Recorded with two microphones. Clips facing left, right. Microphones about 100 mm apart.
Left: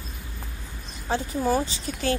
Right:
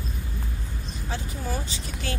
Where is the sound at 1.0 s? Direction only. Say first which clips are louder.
Left 9 dB; 35° left (ahead or behind).